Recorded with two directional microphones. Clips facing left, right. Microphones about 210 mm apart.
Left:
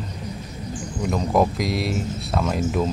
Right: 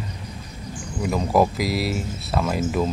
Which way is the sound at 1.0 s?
5° right (ahead or behind).